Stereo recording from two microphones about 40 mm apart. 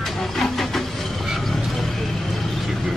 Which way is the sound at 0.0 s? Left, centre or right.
Centre.